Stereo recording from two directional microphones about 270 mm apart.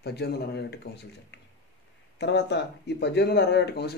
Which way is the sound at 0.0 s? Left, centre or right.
Left.